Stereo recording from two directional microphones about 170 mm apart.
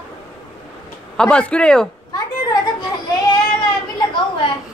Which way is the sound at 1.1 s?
5° left (ahead or behind).